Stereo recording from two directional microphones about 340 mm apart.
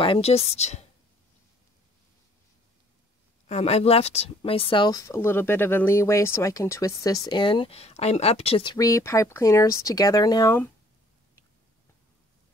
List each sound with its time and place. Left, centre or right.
0.0 s speech: centre
3.4 s speech: centre